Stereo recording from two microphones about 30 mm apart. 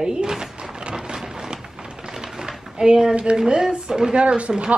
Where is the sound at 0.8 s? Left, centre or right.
Right.